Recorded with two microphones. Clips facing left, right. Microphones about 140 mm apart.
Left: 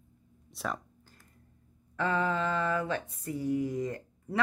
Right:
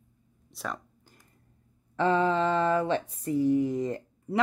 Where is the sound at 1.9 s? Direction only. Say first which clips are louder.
Right 5 dB; 25° right (ahead or behind).